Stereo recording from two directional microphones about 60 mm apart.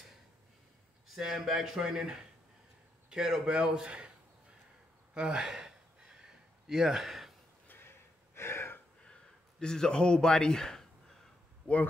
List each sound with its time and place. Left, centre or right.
1.0 s a man's voice: centre
5.1 s speech: centre
6.2 s a sound: centre
7.6 s gasp: left
9.0 s a sound: centre
11.6 s speech: left